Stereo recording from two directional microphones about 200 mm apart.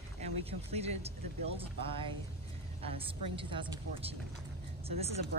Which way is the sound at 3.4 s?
25° right (ahead or behind).